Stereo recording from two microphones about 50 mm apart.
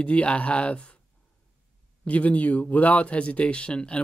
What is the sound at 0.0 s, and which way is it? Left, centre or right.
Speech, left.